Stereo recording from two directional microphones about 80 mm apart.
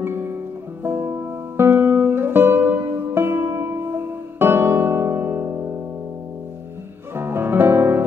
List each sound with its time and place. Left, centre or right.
0.0 s music: right
7.2 s music: right